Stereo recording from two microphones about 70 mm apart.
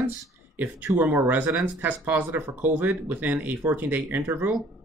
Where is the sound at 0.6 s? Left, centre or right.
Right.